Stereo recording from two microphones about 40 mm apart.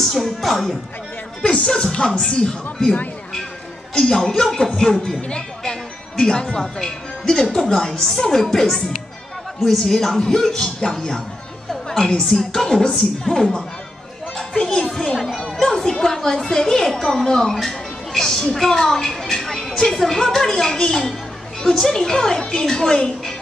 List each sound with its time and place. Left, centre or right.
0.1 s music: centre
1.4 s music: left
1.7 s speech: centre
3.9 s music: left
4.6 s speech: left
11.9 s a woman's voice: left
14.5 s music: centre
15.3 s speech: centre